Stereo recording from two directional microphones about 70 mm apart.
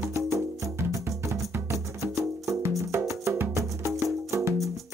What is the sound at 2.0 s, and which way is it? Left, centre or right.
Music, right.